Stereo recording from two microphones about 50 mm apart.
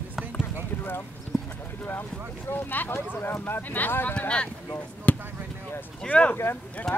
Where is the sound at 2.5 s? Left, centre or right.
Left.